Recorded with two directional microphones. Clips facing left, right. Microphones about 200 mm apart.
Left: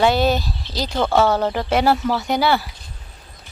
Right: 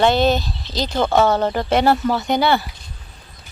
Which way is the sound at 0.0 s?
5° left (ahead or behind).